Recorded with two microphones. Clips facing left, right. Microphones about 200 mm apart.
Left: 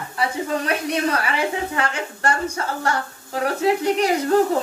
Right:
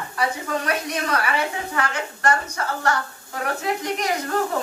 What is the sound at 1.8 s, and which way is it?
Speech, 30° left (ahead or behind).